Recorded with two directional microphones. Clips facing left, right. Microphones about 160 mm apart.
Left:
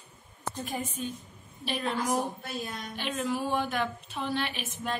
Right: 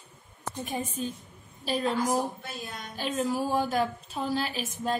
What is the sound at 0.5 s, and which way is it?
Speech, 20° right (ahead or behind).